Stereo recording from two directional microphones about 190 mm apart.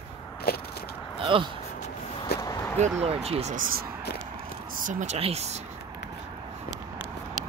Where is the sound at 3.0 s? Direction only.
30° right (ahead or behind).